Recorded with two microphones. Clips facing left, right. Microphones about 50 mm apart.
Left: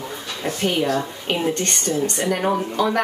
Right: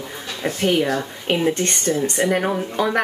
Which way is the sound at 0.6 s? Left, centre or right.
Centre.